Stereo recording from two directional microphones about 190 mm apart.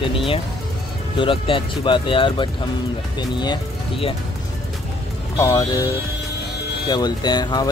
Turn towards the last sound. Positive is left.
turn(degrees=20)  # may be behind; listen again after turning